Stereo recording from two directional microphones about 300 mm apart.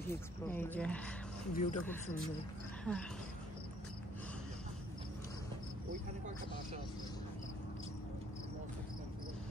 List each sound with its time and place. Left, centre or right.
0.1 s speech: centre
1.5 s speech: left
2.8 s cricket: centre